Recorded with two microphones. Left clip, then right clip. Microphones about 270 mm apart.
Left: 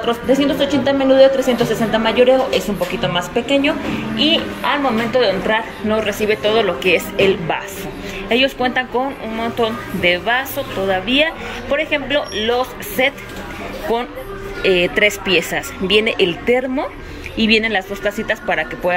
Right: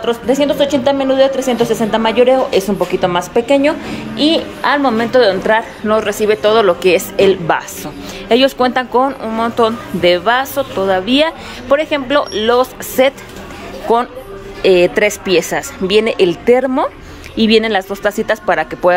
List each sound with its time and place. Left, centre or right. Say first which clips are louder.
0.0 s a woman's voice: right 2 dB; centre
4.2 s a woman's voice: right 3 dB; right
5.2 s a woman's voice: right 4 dB; centre
13.9 s a woman's voice: right 7 dB; right
14.6 s a woman's voice: right 4 dB; centre